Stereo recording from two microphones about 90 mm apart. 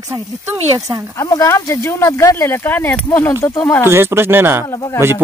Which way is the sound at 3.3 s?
35° left (ahead or behind).